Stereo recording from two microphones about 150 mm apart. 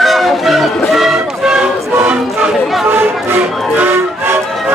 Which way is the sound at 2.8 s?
15° right (ahead or behind).